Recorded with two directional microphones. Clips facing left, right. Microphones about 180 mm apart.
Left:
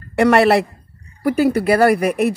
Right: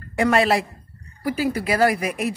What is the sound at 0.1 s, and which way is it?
A woman's voice, 70° left (ahead or behind).